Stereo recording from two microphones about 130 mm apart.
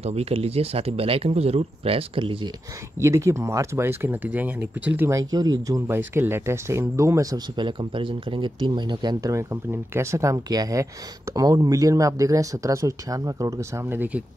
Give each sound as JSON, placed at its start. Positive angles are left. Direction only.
{"t": 0.0, "sound": "speech", "side_deg": -50}
{"t": 3.0, "sound": "speech", "side_deg": -20}
{"t": 5.9, "sound": "speech", "side_deg": -15}